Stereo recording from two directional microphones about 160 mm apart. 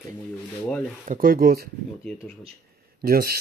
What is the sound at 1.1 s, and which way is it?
Speech, 65° right (ahead or behind).